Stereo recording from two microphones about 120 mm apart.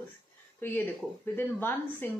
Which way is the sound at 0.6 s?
20° left (ahead or behind).